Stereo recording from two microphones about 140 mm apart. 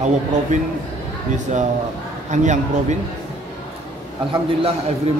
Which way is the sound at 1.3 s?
55° right (ahead or behind).